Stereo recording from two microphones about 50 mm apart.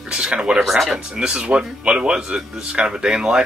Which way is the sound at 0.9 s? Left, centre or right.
Centre.